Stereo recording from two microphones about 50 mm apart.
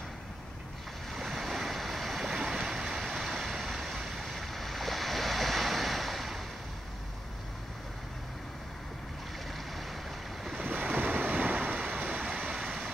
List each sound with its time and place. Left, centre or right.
1.1 s waves: centre
10.4 s waves: centre
10.7 s waves: right
12.0 s a sound: centre
12.6 s vehicle: centre